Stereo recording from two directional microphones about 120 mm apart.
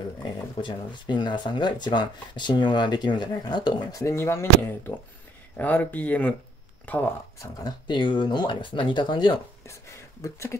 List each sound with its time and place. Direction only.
0.2 s speech: 40° left (ahead or behind)
4.0 s speech: 20° left (ahead or behind)
7.3 s speech: 30° left (ahead or behind)
10.2 s speech: 25° left (ahead or behind)